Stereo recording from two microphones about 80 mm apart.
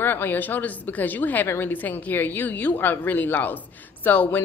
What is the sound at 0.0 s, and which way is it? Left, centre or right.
Speech, left.